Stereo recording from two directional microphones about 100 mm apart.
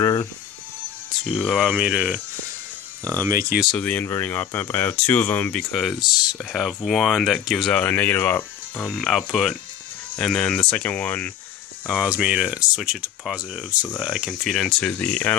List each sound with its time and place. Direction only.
0.0 s music: 35° left (ahead or behind)
1.2 s speech: centre (ahead or behind)
1.7 s speech: 10° right (ahead or behind)
3.2 s speech: 30° right (ahead or behind)
3.7 s speech: 15° left (ahead or behind)
5.7 s speech: centre (ahead or behind)
5.9 s speech: 45° left (ahead or behind)
6.5 s speech: centre (ahead or behind)
7.7 s speech: 15° left (ahead or behind)
8.8 s speech: 5° left (ahead or behind)
11.9 s speech: 10° right (ahead or behind)
14.0 s speech: 5° right (ahead or behind)
14.8 s speech: 15° left (ahead or behind)